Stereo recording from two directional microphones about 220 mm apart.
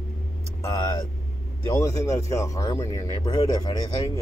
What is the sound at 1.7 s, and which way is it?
Speech, 15° left (ahead or behind).